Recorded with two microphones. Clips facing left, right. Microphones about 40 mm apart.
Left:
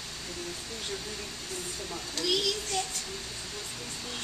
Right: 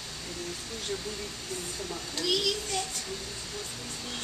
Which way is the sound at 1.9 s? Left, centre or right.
Centre.